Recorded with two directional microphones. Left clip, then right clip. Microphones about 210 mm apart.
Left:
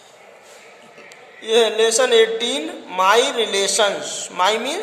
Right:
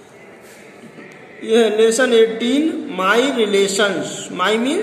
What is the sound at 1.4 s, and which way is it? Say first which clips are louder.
Speech: right 2 dB; 35° left (ahead or behind).